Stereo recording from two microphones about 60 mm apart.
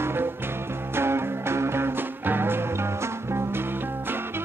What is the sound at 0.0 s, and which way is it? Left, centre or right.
Music, right.